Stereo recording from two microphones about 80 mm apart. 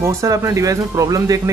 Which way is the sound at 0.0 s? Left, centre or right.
Right.